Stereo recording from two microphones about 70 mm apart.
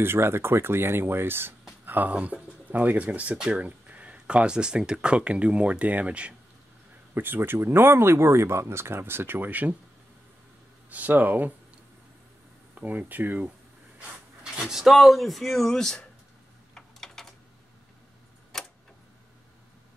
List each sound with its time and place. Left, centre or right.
0.0 s speech: right; by 6.3 s centre
7.2 s speech: right
10.9 s speech: right
12.7 s speech: right
14.4 s speech: centre
16.7 s typing: centre
18.5 s tick-tock: centre